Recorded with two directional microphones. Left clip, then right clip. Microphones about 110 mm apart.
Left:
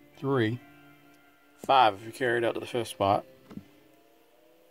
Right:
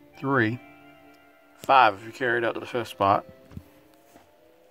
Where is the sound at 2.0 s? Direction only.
30° left (ahead or behind).